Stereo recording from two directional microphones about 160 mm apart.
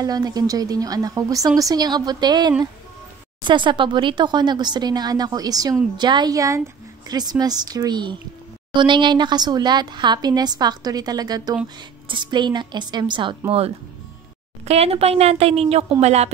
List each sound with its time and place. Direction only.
0.0 s a woman's voice: 25° right (ahead or behind); by 16.3 s 40° right (ahead or behind)